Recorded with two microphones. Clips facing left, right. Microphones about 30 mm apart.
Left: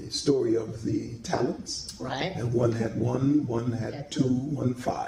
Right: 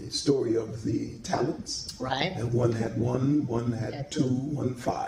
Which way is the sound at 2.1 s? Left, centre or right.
Right.